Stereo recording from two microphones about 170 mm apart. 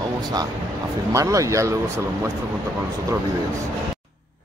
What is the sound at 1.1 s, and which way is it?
Speech, 20° right (ahead or behind).